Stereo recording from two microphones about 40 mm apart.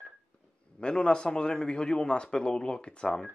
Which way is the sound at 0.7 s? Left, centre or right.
Left.